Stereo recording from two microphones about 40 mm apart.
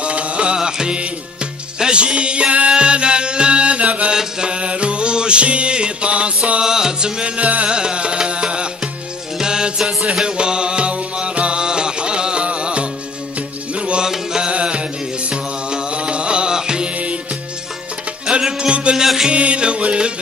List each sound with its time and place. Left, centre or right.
0.0 s music: right
4.1 s music: centre
6.6 s music: centre
7.4 s music: right
7.7 s music: right
14.0 s mantra: centre
14.5 s music: right
18.4 s music: right